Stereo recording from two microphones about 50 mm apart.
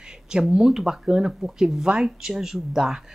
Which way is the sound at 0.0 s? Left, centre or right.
Centre.